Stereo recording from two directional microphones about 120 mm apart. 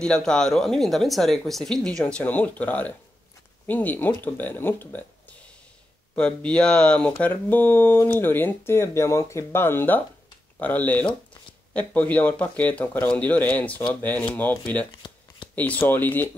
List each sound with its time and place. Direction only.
0.0 s speech: 5° left (ahead or behind)
6.1 s speech: 10° left (ahead or behind)
15.0 s shuffling cards: 40° left (ahead or behind)
15.5 s speech: 10° left (ahead or behind)